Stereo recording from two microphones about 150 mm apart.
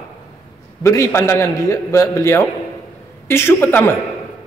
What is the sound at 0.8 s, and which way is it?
A man's voice, 20° left (ahead or behind).